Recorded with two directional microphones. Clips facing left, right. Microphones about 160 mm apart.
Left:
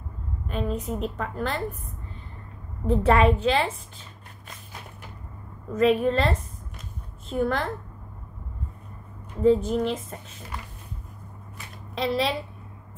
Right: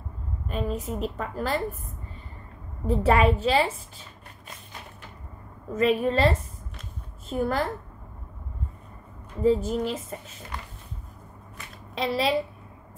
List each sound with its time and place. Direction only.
0.5 s a woman's voice: centre (ahead or behind)
2.9 s a woman's voice: 5° right (ahead or behind)
5.8 s a woman's voice: centre (ahead or behind)
9.4 s a woman's voice: 5° right (ahead or behind)
11.5 s a sound: centre (ahead or behind)